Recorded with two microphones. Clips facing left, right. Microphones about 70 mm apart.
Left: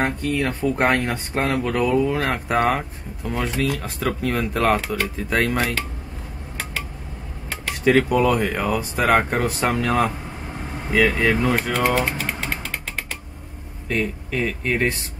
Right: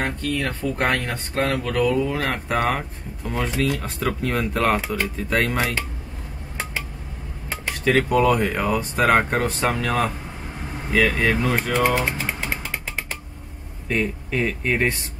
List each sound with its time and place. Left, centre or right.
0.0 s speech: centre
1.9 s speech: centre
7.8 s speech: centre
11.9 s speech: centre
12.3 s a sound: centre
13.8 s speech: centre